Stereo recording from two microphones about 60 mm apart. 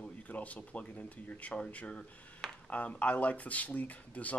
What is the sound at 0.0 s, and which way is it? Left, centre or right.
Speech, left.